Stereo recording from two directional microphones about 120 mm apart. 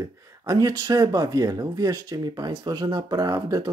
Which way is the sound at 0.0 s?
30° right (ahead or behind).